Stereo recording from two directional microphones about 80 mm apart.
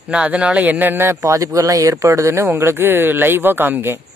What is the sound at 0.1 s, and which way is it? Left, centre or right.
Speech, centre.